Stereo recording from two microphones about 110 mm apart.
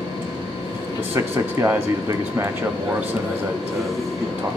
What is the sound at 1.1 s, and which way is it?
Speech, 20° right (ahead or behind).